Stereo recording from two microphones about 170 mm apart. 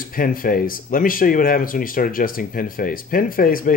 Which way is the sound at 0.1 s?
55° left (ahead or behind).